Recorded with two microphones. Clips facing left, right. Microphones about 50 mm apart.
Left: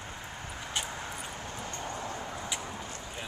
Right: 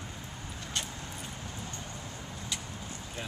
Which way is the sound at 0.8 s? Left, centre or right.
Left.